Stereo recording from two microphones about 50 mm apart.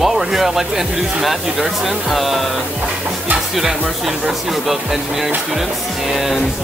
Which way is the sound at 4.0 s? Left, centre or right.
Centre.